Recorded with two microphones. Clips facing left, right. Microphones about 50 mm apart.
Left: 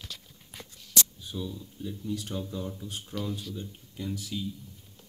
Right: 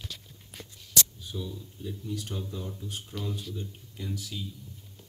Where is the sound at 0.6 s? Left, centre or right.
Left.